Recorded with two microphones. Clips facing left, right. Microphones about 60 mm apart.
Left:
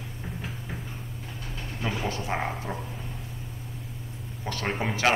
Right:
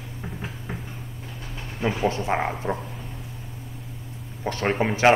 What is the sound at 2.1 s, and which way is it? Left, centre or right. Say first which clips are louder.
Speech: right 5 dB; right.